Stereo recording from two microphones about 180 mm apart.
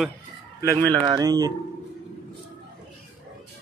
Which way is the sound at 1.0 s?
20° right (ahead or behind).